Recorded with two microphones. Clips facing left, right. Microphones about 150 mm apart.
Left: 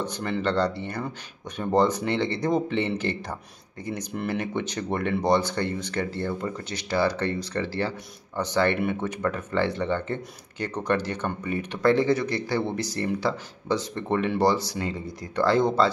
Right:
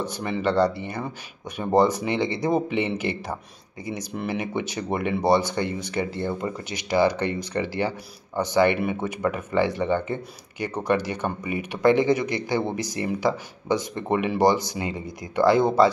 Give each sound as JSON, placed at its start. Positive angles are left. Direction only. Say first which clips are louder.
{"t": 0.1, "sound": "speech", "louder": "right 2 dB", "side_deg": -5}